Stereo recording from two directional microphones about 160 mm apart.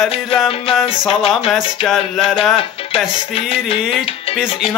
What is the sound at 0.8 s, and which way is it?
Music, 35° left (ahead or behind).